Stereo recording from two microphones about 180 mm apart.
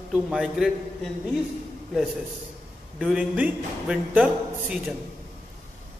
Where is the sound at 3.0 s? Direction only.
5° right (ahead or behind).